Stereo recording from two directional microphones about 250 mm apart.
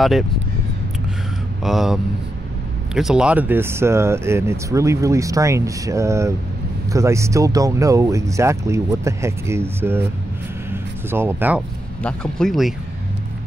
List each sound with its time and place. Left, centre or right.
1.6 s speech: centre
10.7 s a sound: centre
12.0 s speech: centre